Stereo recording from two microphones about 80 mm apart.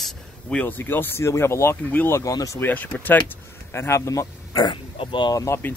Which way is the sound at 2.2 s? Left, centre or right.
Left.